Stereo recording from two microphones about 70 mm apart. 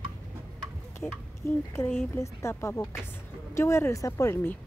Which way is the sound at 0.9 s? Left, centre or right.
Left.